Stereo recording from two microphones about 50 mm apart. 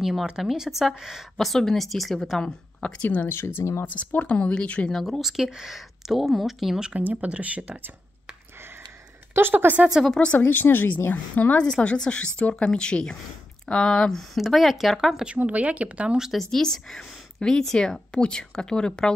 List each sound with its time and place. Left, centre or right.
0.0 s speech: centre
1.4 s speech: centre
2.8 s speech: left
3.3 s speech: left
3.8 s speech: left
4.9 s speech: centre
5.2 s speech: centre
6.9 s speech: right
9.3 s a woman's voice: right
10.4 s a woman's voice: left
11.7 s speech: centre
15.4 s speech: right
16.3 s speech: centre